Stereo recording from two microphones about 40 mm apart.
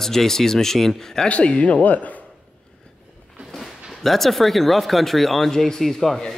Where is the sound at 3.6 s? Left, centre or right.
Centre.